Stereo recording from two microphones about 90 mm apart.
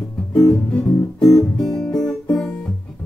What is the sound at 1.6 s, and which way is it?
Guitar, 5° left (ahead or behind).